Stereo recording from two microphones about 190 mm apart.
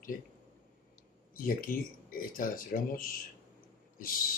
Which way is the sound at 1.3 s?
45° left (ahead or behind).